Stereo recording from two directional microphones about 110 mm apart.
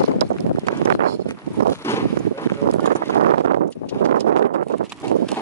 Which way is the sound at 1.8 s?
25° left (ahead or behind).